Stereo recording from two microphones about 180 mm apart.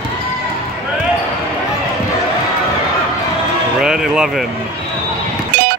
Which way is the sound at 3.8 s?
5° right (ahead or behind).